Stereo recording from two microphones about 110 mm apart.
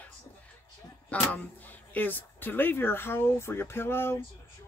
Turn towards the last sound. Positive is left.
turn(degrees=20)  # may be behind; listen again after turning